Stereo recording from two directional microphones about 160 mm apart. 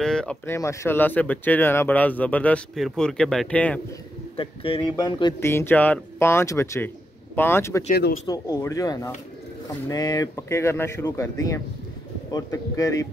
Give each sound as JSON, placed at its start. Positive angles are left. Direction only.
{"t": 0.0, "sound": "speech", "side_deg": 5}
{"t": 0.5, "sound": "speech", "side_deg": 15}
{"t": 4.4, "sound": "speech", "side_deg": 35}
{"t": 7.9, "sound": "speech", "side_deg": 70}
{"t": 8.3, "sound": "speech", "side_deg": 20}